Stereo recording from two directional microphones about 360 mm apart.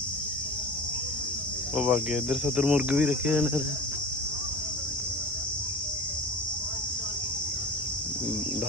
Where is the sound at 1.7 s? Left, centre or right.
Centre.